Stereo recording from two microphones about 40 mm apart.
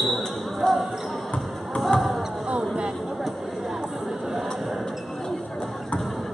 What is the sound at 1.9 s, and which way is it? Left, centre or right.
Basketball bounce, centre.